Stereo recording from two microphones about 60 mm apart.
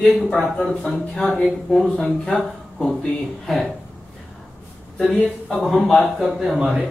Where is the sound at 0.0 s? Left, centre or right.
Centre.